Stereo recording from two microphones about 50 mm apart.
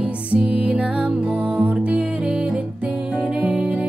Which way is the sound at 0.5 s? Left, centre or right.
Right.